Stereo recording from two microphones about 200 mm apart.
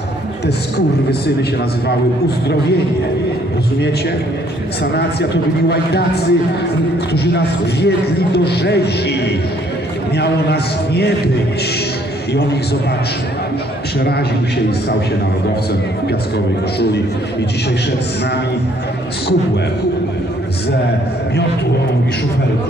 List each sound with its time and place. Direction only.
4.9 s speech: 55° left (ahead or behind)
13.9 s a man's voice: 55° left (ahead or behind)